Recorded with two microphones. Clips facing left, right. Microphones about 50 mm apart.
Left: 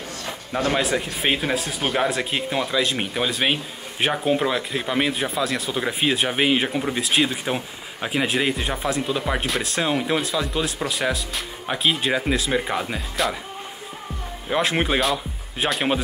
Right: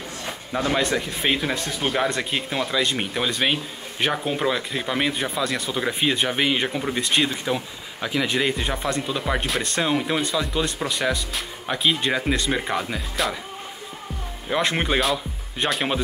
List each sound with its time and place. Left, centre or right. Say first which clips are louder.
0.7 s speech: even; centre
7.4 s speech: even; left
8.3 s speech: even; centre
14.5 s speech: left 1 dB; centre